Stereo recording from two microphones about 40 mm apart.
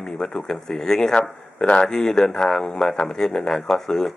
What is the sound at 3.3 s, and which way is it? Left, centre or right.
Speech, left.